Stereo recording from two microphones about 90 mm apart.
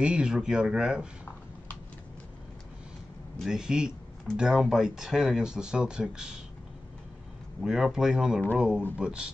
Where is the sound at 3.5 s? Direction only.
10° right (ahead or behind).